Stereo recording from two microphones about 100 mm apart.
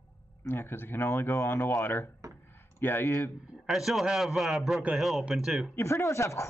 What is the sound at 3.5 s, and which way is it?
A man's voice, centre (ahead or behind).